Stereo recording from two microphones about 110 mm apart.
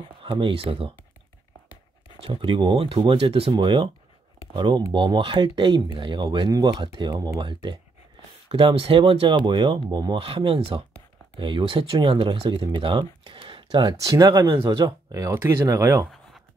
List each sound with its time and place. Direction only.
0.0 s speech: 55° right (ahead or behind)
2.1 s speech: 55° right (ahead or behind)
3.5 s speech: 50° right (ahead or behind)
10.1 s speech: 60° right (ahead or behind)
13.3 s a sound: 50° right (ahead or behind)
13.9 s speech: 30° right (ahead or behind)
14.7 s speech: 30° right (ahead or behind)